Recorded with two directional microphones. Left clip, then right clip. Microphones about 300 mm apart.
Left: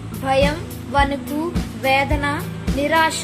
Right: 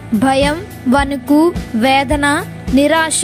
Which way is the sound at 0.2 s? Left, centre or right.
Right.